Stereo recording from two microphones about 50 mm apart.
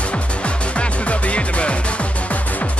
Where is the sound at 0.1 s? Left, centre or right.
Left.